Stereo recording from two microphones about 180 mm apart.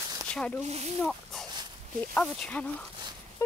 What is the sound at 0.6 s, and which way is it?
Speech, 35° right (ahead or behind).